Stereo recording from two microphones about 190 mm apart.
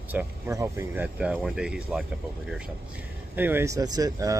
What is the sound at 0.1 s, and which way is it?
Speech, 10° right (ahead or behind).